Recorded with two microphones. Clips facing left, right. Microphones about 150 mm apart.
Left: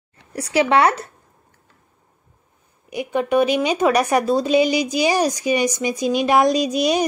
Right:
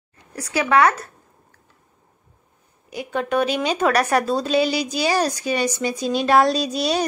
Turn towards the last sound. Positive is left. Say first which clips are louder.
# left 3 dB
turn(degrees=15)  # may be behind; listen again after turning